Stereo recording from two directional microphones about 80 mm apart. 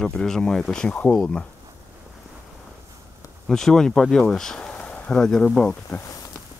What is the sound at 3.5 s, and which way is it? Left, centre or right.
Speech, centre.